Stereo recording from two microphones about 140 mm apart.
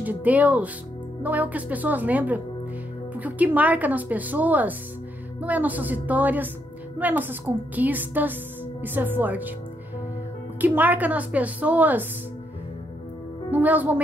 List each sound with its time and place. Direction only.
0.0 s speech: 10° right (ahead or behind)
10.6 s speech: 10° right (ahead or behind)
13.5 s speech: 10° right (ahead or behind)